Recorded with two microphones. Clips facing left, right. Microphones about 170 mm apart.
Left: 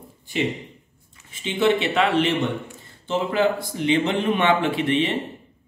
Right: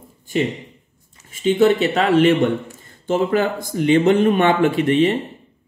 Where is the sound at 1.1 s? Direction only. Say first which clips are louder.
Right 11 dB; 40° right (ahead or behind).